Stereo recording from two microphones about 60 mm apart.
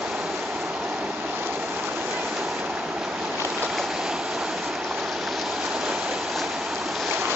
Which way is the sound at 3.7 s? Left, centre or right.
Centre.